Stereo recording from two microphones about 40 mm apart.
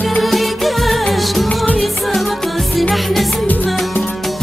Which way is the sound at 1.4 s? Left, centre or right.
Left.